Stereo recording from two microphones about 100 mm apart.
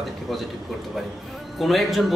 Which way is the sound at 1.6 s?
Centre (ahead or behind).